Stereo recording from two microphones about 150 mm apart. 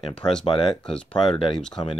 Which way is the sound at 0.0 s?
35° left (ahead or behind).